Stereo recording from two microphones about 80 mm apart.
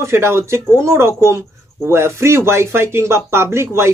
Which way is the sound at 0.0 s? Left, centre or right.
Right.